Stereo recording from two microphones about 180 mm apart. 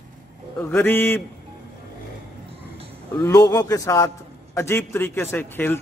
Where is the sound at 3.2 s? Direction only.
20° left (ahead or behind).